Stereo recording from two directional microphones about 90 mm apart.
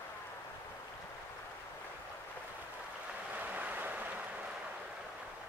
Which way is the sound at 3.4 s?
20° right (ahead or behind).